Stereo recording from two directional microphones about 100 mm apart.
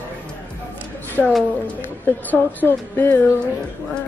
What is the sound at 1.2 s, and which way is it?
Speech, 5° left (ahead or behind).